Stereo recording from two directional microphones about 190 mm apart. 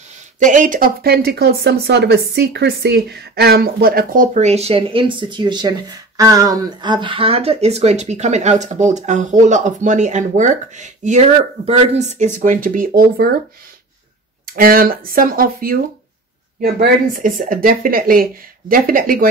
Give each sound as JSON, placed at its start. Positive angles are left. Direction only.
{"t": 0.4, "sound": "speech", "side_deg": -40}
{"t": 14.5, "sound": "speech", "side_deg": -50}